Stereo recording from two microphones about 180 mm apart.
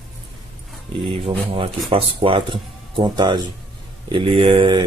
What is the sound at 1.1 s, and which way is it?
Speech, 30° right (ahead or behind).